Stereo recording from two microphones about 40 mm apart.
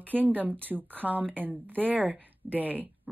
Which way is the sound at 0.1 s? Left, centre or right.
Right.